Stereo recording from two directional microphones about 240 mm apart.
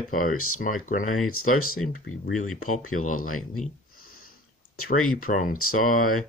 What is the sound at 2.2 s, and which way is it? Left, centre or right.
Speech, left.